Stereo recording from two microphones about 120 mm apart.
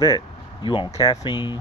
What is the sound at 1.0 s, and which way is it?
Speech, 30° left (ahead or behind).